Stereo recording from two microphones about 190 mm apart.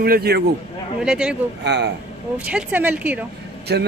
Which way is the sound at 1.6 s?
60° right (ahead or behind).